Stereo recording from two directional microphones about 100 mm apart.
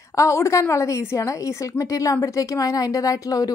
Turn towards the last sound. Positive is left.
turn(degrees=35)  # may be behind; listen again after turning